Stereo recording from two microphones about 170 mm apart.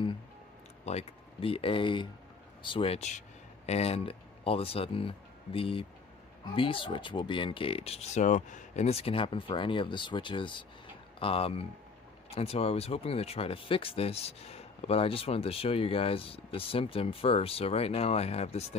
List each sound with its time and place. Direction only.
0.8 s speech: 35° left (ahead or behind)